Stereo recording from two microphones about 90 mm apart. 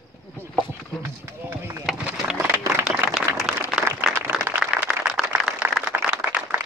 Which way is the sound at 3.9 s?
25° right (ahead or behind).